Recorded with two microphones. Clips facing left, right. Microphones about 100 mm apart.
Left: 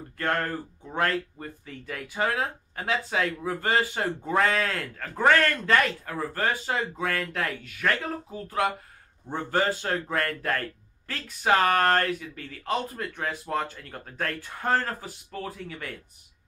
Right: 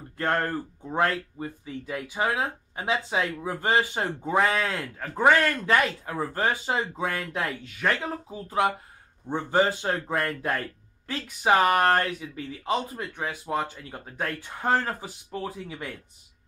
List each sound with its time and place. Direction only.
0.2 s speech: 25° right (ahead or behind)
1.4 s speech: 10° right (ahead or behind)